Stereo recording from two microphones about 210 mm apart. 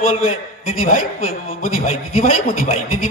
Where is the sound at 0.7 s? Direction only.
40° left (ahead or behind).